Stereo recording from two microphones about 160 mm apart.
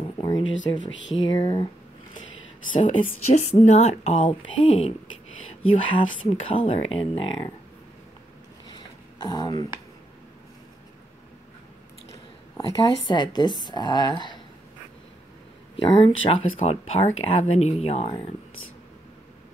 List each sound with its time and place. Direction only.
0.2 s speech: 30° left (ahead or behind)
2.7 s speech: 35° left (ahead or behind)
8.6 s a sound: 25° left (ahead or behind)
12.1 s speech: 25° left (ahead or behind)
15.7 s speech: 35° left (ahead or behind)